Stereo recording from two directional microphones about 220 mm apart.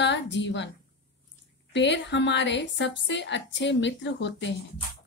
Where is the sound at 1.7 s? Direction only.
55° left (ahead or behind).